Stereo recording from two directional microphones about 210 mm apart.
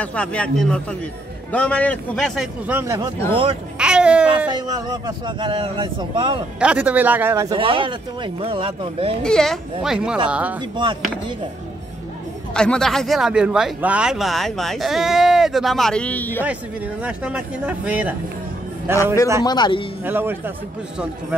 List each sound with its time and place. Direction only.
0.0 s speech: 5° left (ahead or behind); by 3.1 s 15° right (ahead or behind)
3.7 s a sound: 5° right (ahead or behind)
4.5 s speech: 20° right (ahead or behind)
6.6 s speech: 5° right (ahead or behind)
7.5 s speech: 25° right (ahead or behind)
9.2 s speech: 5° left (ahead or behind)
10.8 s speech: 20° right (ahead or behind)
12.5 s speech: 5° left (ahead or behind)
17.0 s speech: 5° right (ahead or behind)
19.4 s speech: 20° left (ahead or behind)
20.1 s speech: 10° right (ahead or behind)